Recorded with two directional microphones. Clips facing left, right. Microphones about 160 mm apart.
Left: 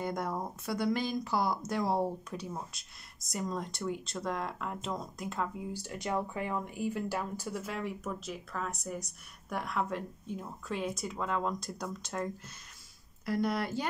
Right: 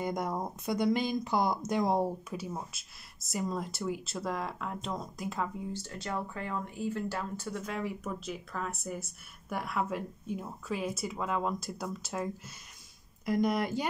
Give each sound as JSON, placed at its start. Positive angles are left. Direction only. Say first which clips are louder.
{"t": 0.0, "sound": "speech", "louder": "right 2 dB", "side_deg": -15}
{"t": 2.3, "sound": "speech", "louder": "right 2 dB", "side_deg": -5}
{"t": 5.7, "sound": "speech", "louder": "left 2 dB", "side_deg": 15}
{"t": 13.2, "sound": "speech", "louder": "right 3 dB", "side_deg": -15}